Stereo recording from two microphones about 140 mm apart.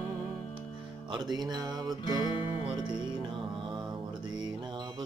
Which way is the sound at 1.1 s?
30° right (ahead or behind).